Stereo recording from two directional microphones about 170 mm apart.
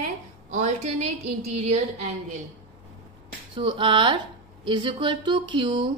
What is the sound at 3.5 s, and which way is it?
A woman's voice, 30° right (ahead or behind).